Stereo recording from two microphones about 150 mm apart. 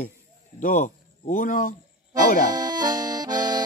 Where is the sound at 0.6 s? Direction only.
60° left (ahead or behind).